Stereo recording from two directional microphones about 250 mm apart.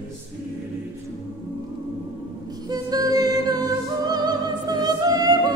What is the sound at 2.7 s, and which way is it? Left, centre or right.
Music, centre.